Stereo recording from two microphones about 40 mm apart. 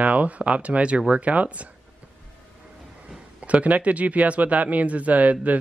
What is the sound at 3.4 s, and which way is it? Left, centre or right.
Speech, right.